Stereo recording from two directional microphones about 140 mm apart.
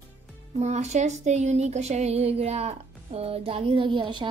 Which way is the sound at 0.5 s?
55° right (ahead or behind).